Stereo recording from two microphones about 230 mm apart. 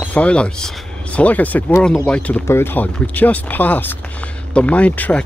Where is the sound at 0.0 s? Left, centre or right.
Centre.